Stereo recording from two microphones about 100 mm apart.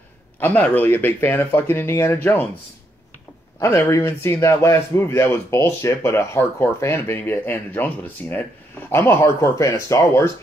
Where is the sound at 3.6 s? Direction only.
30° left (ahead or behind).